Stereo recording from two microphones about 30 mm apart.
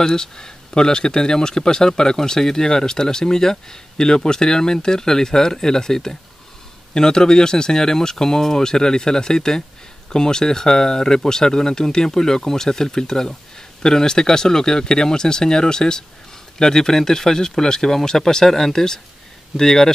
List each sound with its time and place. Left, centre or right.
0.0 s speech: left